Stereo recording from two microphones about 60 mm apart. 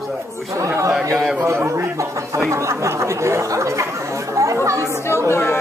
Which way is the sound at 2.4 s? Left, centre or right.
Right.